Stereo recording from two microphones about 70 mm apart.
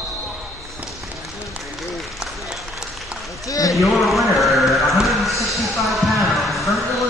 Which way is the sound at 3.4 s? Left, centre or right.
Left.